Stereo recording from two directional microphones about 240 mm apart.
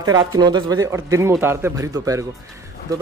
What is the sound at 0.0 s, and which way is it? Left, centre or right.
Speech, centre.